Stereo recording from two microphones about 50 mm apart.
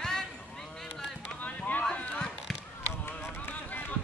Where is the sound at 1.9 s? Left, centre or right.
Left.